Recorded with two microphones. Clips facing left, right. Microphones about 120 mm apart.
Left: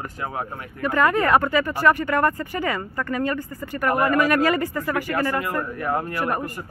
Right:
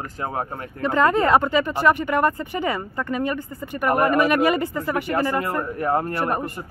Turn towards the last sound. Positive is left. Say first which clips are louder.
# right 1 dB
turn(degrees=-25)  # may be behind; listen again after turning